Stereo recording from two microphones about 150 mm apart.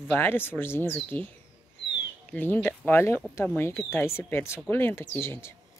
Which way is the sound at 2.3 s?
10° left (ahead or behind).